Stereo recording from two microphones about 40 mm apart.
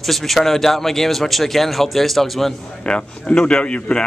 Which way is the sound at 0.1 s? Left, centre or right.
Centre.